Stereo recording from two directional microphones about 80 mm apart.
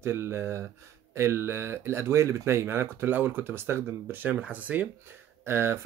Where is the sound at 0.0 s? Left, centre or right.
Right.